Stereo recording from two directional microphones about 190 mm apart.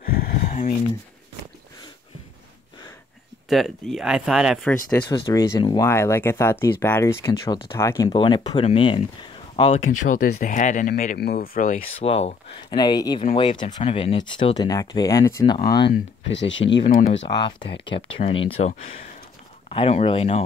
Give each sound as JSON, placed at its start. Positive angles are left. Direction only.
{"t": 0.0, "sound": "a sound", "side_deg": 50}
{"t": 3.4, "sound": "speech", "side_deg": 0}
{"t": 5.0, "sound": "speech", "side_deg": 20}
{"t": 10.0, "sound": "speech", "side_deg": 45}
{"t": 12.0, "sound": "speech", "side_deg": 30}
{"t": 15.6, "sound": "speech", "side_deg": 60}
{"t": 17.3, "sound": "speech", "side_deg": 25}
{"t": 19.7, "sound": "speech", "side_deg": 30}